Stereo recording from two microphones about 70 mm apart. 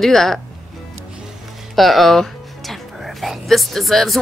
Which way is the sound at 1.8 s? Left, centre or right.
Centre.